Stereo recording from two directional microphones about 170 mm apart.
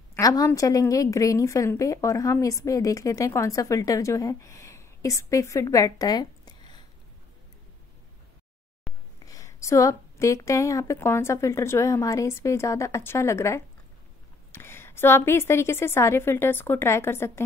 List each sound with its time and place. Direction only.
0.1 s a woman's voice: 20° left (ahead or behind)
8.9 s a sound: 5° left (ahead or behind)
9.2 s a woman's voice: 20° left (ahead or behind)